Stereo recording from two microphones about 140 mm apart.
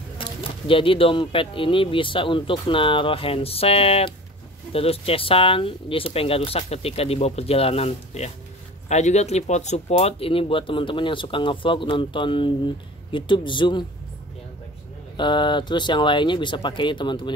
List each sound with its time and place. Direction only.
0.2 s speech: 40° left (ahead or behind)
15.1 s speech: 35° left (ahead or behind)